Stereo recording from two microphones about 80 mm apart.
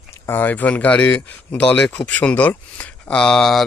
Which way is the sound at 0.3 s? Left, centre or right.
Left.